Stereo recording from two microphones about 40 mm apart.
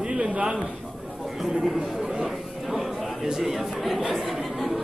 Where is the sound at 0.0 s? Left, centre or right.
Right.